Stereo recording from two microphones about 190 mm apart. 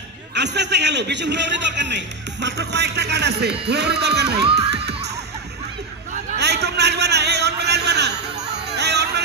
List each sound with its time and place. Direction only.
0.3 s a man's voice: 65° right (ahead or behind)
6.3 s a sound: 60° right (ahead or behind)
8.7 s hubbub: 60° right (ahead or behind)